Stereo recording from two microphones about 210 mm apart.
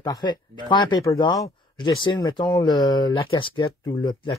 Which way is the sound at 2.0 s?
20° left (ahead or behind).